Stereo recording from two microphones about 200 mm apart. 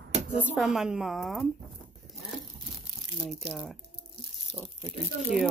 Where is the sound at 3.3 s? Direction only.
5° right (ahead or behind).